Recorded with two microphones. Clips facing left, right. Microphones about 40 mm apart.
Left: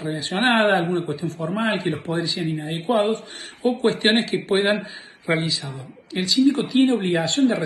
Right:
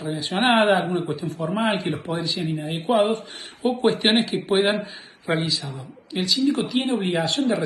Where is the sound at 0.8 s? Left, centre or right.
Left.